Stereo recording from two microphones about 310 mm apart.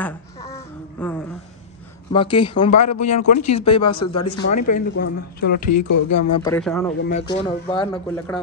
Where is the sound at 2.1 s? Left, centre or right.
Centre.